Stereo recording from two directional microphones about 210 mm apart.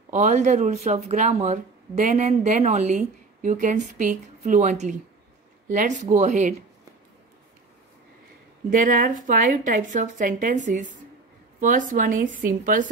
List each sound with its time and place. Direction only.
0.1 s speech: 35° right (ahead or behind)
8.6 s speech: 40° right (ahead or behind)